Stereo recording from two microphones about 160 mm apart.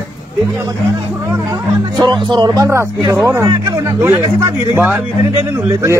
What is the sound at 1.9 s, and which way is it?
Speech, 30° right (ahead or behind).